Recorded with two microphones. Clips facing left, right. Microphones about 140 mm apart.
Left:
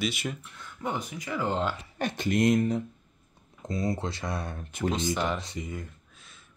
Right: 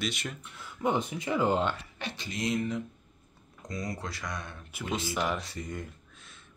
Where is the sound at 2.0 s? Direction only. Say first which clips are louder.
Left 10 dB; 50° left (ahead or behind).